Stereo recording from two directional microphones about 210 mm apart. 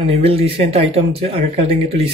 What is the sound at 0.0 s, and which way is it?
Speech, 25° right (ahead or behind).